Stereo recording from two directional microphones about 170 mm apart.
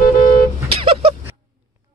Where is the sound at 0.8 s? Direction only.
30° right (ahead or behind).